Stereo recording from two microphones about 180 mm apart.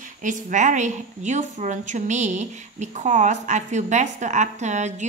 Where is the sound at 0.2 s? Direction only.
45° right (ahead or behind).